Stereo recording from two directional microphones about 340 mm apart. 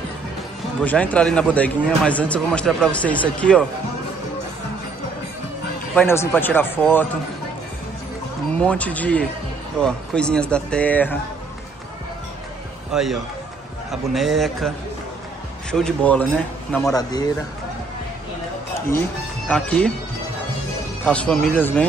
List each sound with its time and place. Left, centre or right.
0.8 s speech: centre
5.9 s speech: centre
8.5 s speech: centre
12.9 s speech: centre
15.7 s a man's voice: centre
18.9 s speech: centre
21.0 s speech: centre